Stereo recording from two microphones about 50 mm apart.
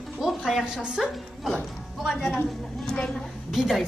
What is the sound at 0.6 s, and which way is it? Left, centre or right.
Speech, centre.